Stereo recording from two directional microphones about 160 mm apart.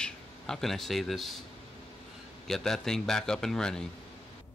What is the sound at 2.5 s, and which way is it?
A man's voice, 5° left (ahead or behind).